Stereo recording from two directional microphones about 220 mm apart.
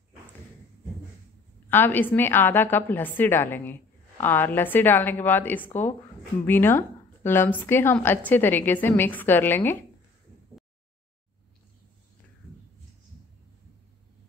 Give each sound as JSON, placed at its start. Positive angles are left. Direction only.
{"t": 1.7, "sound": "a woman's voice", "side_deg": 10}